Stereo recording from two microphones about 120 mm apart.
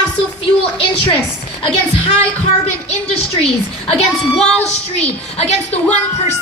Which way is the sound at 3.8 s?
60° left (ahead or behind).